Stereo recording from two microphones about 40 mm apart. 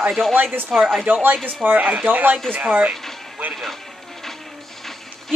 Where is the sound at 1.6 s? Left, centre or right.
Right.